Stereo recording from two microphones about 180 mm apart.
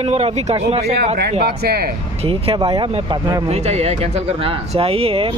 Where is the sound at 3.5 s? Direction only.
35° right (ahead or behind).